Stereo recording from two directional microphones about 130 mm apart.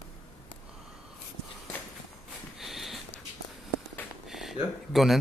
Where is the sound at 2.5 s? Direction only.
Centre (ahead or behind).